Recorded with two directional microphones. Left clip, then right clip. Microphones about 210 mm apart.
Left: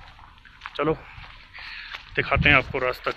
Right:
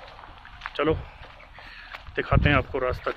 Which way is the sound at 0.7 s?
10° left (ahead or behind).